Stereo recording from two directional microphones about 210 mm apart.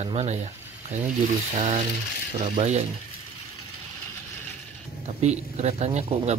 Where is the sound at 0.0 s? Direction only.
30° right (ahead or behind).